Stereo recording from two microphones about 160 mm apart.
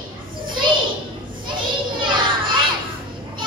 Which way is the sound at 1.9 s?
30° right (ahead or behind).